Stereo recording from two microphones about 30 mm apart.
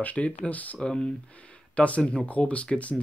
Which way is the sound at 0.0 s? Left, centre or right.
Left.